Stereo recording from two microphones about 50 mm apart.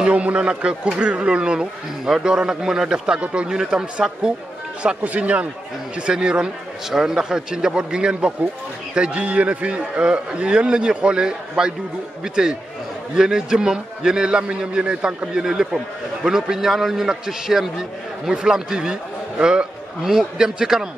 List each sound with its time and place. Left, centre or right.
0.0 s a man's voice: right; by 4.3 s centre
5.0 s a man's voice: right; by 20.9 s centre